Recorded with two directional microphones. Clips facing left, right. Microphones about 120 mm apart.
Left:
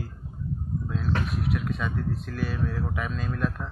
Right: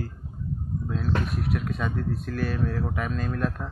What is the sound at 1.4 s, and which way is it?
Speech, 45° right (ahead or behind).